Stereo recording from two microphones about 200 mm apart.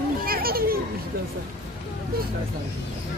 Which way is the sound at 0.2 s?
50° right (ahead or behind).